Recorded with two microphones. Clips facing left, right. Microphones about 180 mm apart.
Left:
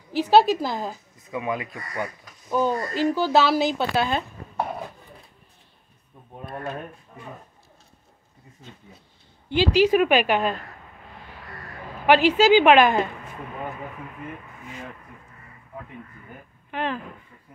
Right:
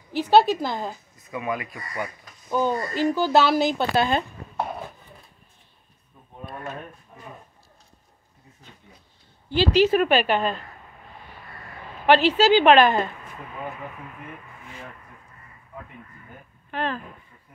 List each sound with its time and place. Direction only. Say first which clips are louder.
0.1 s speech: even; 5° left (ahead or behind)
1.3 s speech: left 1 dB; 20° left (ahead or behind)
2.5 s speech: even; centre (ahead or behind)
9.5 s a woman's voice: even; 10° left (ahead or behind)
12.1 s a woman's voice: left 1 dB; 10° left (ahead or behind)
16.7 s a woman's voice: even; 15° left (ahead or behind)